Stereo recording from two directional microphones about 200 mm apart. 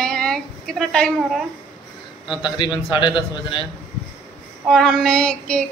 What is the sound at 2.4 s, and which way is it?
A man's voice, 25° left (ahead or behind).